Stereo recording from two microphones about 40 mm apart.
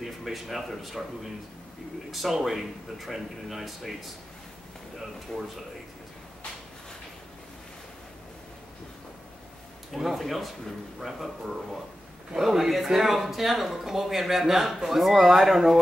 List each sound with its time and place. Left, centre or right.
0.0 s speech: centre
5.3 s speech: centre
9.9 s a man's voice: centre